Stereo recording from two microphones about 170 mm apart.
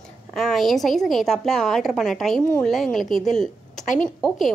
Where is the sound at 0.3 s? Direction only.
Centre (ahead or behind).